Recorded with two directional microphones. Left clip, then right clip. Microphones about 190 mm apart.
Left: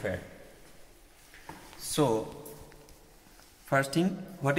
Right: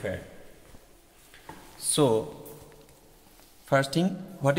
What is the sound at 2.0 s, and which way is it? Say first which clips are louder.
Speech: right 4 dB; 60° right (ahead or behind).